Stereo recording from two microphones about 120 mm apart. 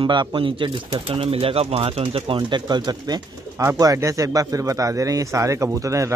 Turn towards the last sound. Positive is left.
turn(degrees=-25)  # may be behind; listen again after turning